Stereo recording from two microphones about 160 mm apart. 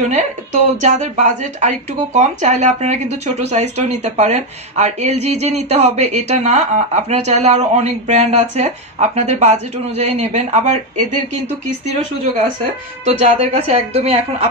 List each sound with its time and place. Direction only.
0.0 s speech: 45° right (ahead or behind)
13.0 s speech: 45° right (ahead or behind)